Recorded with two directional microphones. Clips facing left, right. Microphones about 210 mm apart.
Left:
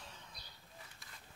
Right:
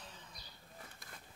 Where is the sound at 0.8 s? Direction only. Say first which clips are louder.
Right 5 dB; 50° right (ahead or behind).